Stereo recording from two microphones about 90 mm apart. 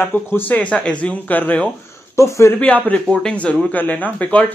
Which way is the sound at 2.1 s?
35° left (ahead or behind).